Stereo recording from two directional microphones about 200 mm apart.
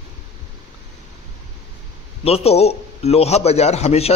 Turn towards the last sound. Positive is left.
turn(degrees=30)  # may be behind; listen again after turning